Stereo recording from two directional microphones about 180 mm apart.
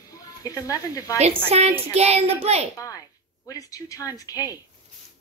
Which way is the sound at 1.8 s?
35° right (ahead or behind).